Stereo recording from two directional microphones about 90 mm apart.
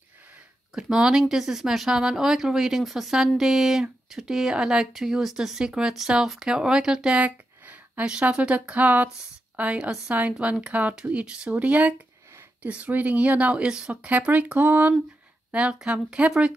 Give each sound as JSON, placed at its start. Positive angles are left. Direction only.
{"t": 0.7, "sound": "speech", "side_deg": -10}